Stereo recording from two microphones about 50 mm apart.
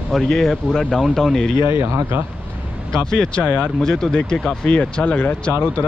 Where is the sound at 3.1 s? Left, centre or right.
Centre.